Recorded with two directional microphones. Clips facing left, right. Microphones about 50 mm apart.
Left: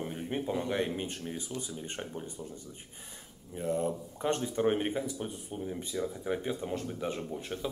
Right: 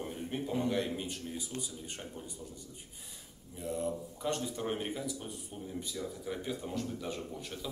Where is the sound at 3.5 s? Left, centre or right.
Left.